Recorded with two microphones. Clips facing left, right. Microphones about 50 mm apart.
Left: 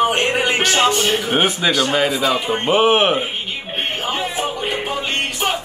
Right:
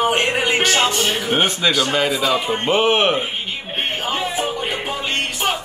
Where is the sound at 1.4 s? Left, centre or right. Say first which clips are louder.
Left 1 dB; centre.